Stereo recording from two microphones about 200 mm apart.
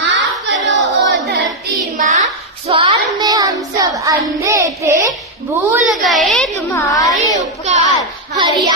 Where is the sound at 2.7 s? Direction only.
30° right (ahead or behind).